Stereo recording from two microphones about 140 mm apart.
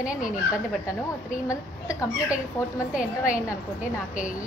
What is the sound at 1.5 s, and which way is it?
Speech, 25° left (ahead or behind).